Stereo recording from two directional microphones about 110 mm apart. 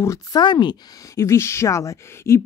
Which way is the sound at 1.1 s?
25° left (ahead or behind).